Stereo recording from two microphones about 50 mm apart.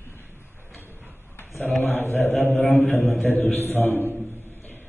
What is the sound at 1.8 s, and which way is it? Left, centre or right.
Mantra, left.